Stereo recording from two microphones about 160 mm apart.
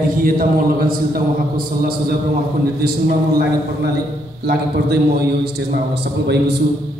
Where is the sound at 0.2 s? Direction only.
65° right (ahead or behind).